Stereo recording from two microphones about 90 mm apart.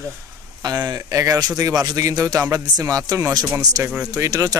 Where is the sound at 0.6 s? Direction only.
45° right (ahead or behind).